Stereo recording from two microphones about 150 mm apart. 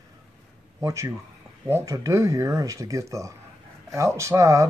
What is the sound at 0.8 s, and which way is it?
Speech, 20° right (ahead or behind).